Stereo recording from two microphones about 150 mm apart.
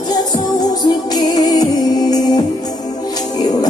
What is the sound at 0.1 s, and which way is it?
Music, 25° left (ahead or behind).